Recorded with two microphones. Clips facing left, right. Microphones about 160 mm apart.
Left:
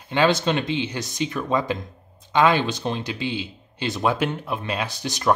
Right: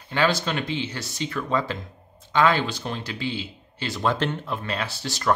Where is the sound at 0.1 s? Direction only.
20° left (ahead or behind).